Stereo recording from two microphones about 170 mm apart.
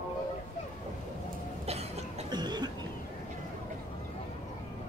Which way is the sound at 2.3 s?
25° right (ahead or behind).